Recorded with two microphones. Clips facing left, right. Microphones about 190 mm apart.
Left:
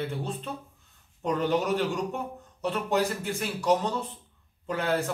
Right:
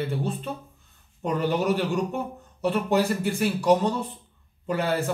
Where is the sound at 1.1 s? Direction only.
5° right (ahead or behind).